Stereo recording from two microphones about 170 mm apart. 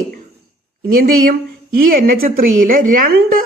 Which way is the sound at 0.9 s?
55° right (ahead or behind).